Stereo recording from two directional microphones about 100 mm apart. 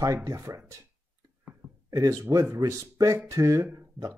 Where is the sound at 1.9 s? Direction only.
35° right (ahead or behind).